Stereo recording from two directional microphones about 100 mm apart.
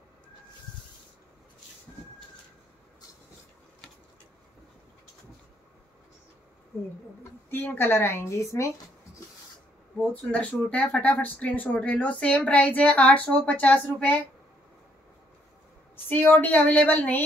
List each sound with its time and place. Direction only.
7.5 s a woman's voice: 20° left (ahead or behind)
10.3 s speech: 10° left (ahead or behind)
16.1 s speech: 20° left (ahead or behind)